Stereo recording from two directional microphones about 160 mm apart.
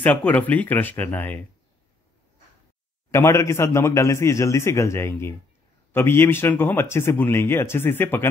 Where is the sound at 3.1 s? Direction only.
15° left (ahead or behind).